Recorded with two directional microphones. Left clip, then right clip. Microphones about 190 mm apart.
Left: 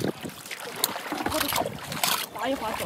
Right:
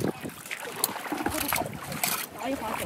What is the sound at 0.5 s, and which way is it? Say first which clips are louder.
Boat: left 2 dB; centre (ahead or behind).